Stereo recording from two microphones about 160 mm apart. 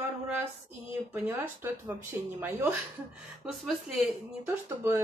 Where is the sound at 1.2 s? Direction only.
15° right (ahead or behind).